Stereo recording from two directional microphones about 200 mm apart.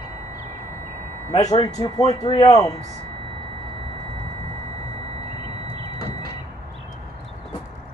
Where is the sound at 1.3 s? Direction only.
20° left (ahead or behind).